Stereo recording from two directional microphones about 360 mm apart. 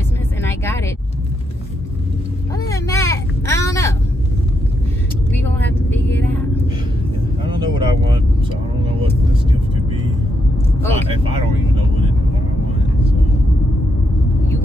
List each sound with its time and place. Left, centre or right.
0.4 s vehicle: centre
2.5 s a sound: centre
5.9 s vehicle: centre
7.4 s vehicle: centre
11.1 s vehicle: centre